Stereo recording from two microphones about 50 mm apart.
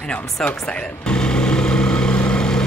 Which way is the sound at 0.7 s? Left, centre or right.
Centre.